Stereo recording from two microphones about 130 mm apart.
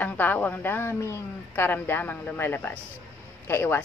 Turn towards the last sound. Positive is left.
turn(degrees=20)  # may be behind; listen again after turning